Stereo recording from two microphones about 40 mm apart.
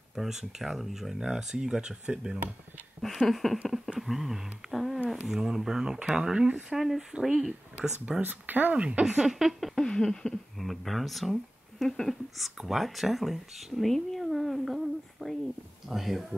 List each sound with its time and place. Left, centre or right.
0.1 s speech: centre
1.1 s speech: centre
3.0 s speech: centre
3.6 s a sound: centre
4.0 s speech: centre
8.2 s speech: right
8.7 s speech: right
9.0 s speech: centre
9.8 s speech: centre
14.2 s a sound: centre
15.9 s speech: centre